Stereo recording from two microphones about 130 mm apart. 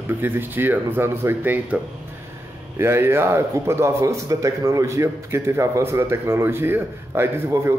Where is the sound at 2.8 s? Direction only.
20° right (ahead or behind).